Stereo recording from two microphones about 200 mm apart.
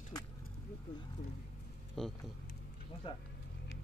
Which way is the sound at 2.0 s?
Centre (ahead or behind).